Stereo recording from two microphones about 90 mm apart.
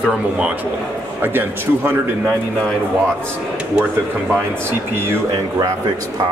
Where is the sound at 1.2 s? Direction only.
25° right (ahead or behind).